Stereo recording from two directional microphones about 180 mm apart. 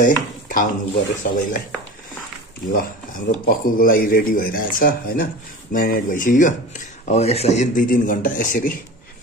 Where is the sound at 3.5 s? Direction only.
50° left (ahead or behind).